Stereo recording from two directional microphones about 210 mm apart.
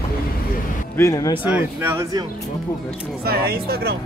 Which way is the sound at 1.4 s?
10° right (ahead or behind).